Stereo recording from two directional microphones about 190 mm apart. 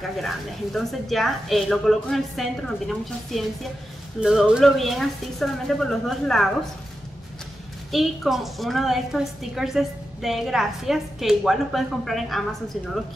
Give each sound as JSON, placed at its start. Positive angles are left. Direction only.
{"t": 0.2, "sound": "a woman's voice", "side_deg": 0}
{"t": 7.9, "sound": "a woman's voice", "side_deg": 0}